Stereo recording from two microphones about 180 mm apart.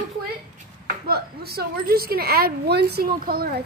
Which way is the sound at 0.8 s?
60° right (ahead or behind).